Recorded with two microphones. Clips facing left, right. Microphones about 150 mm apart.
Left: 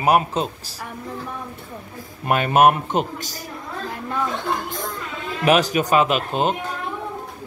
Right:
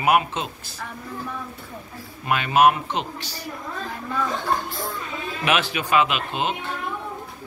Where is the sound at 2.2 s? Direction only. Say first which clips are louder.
Left 2 dB; 45° left (ahead or behind).